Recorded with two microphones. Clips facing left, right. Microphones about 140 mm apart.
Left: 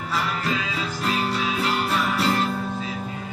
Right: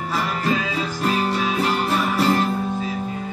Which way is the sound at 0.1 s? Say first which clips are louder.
Right 3 dB; 45° right (ahead or behind).